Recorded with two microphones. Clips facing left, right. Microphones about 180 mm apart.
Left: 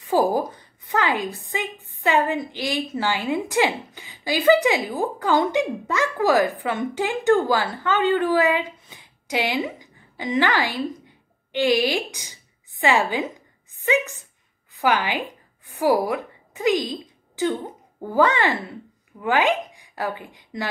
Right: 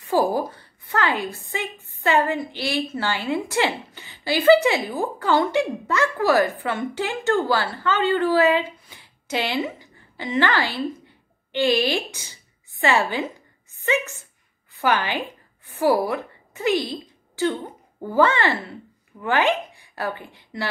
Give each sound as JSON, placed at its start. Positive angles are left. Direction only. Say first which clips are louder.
{"t": 0.0, "sound": "a woman's voice", "louder": "left 1 dB", "side_deg": 15}